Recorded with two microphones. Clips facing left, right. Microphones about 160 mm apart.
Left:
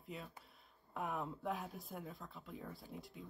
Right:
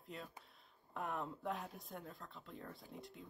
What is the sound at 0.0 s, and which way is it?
Speech, centre (ahead or behind).